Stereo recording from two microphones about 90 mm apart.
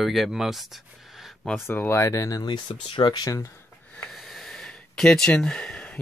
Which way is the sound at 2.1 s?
40° left (ahead or behind).